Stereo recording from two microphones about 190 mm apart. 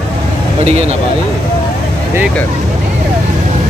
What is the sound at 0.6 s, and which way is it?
Speech, 35° right (ahead or behind).